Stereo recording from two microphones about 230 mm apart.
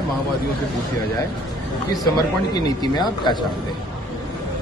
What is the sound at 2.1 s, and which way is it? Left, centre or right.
Speech, centre.